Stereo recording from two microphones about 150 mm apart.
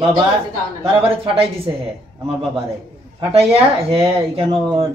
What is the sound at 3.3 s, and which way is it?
Speech, 40° right (ahead or behind).